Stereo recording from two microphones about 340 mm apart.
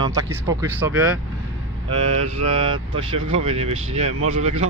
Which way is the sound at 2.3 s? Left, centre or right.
Centre.